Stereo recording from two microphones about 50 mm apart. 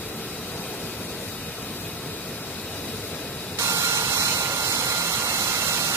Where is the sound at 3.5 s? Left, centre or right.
Right.